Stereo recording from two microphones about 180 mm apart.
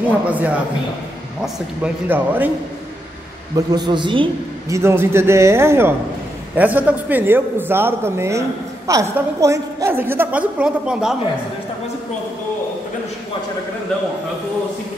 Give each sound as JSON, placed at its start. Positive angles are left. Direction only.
{"t": 0.3, "sound": "a man's voice", "side_deg": -10}
{"t": 2.0, "sound": "a man's voice", "side_deg": -10}
{"t": 3.5, "sound": "a man's voice", "side_deg": -20}
{"t": 4.7, "sound": "a man's voice", "side_deg": -15}